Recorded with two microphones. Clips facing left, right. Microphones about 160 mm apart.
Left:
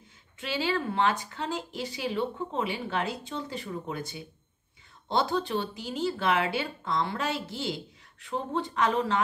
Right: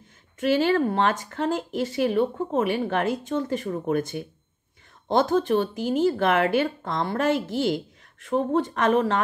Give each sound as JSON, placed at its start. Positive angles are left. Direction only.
{"t": 0.4, "sound": "speech", "side_deg": -55}